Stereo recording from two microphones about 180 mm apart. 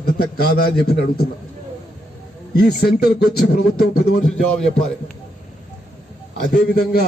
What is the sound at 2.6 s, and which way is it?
A man's voice, 60° left (ahead or behind).